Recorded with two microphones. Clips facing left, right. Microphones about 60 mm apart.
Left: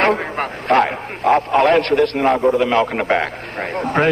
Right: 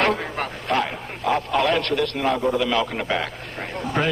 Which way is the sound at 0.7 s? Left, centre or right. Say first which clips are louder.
Left 9 dB; left.